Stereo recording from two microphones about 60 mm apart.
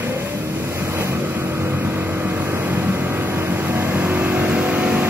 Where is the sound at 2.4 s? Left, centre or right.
Right.